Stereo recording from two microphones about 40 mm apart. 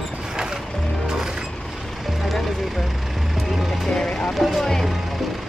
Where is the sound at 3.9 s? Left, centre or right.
Centre.